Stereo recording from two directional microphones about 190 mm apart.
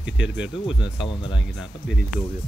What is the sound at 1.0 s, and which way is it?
Speech, 25° left (ahead or behind).